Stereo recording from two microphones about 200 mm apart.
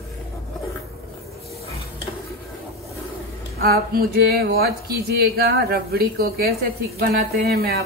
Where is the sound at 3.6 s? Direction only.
50° right (ahead or behind).